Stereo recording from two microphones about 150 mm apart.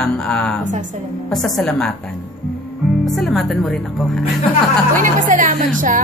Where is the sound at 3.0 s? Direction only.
Centre (ahead or behind).